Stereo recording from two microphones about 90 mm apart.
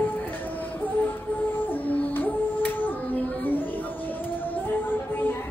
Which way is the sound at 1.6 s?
20° left (ahead or behind).